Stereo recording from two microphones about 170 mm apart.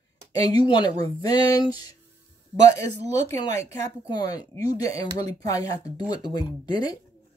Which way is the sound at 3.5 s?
20° left (ahead or behind).